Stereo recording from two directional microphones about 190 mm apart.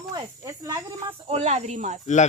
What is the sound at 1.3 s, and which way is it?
Speech, 35° right (ahead or behind).